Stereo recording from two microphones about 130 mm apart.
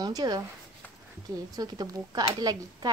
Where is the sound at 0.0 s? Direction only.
30° right (ahead or behind).